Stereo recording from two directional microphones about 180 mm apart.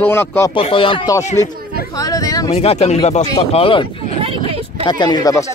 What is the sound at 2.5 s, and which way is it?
Speech, 35° left (ahead or behind).